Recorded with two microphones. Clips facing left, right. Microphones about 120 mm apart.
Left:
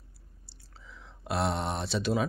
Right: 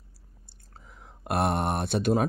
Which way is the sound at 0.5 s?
50° right (ahead or behind).